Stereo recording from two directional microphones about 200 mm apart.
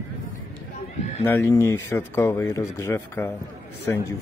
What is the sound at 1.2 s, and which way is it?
Speech, 10° left (ahead or behind).